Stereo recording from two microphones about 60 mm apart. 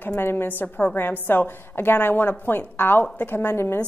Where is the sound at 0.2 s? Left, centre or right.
Left.